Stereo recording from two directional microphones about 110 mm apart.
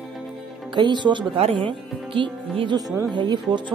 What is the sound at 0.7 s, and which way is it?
Speech, 45° right (ahead or behind).